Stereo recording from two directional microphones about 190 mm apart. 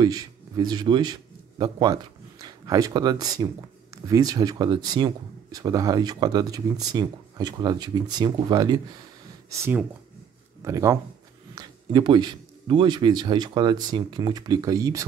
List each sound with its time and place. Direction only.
0.0 s a man's voice: 20° right (ahead or behind)
9.5 s speech: 10° right (ahead or behind)